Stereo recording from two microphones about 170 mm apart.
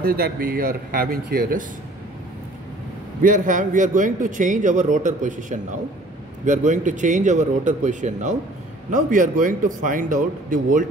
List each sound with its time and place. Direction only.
0.0 s speech: 60° right (ahead or behind)
3.2 s a man's voice: 50° right (ahead or behind)